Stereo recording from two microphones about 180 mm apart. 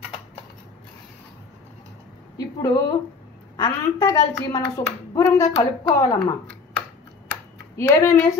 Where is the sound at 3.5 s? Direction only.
20° left (ahead or behind).